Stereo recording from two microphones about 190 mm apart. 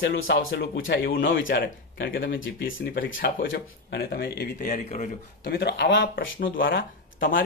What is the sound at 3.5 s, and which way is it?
Speech, 60° left (ahead or behind).